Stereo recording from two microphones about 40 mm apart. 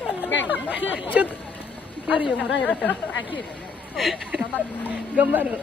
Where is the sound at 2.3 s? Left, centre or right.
Left.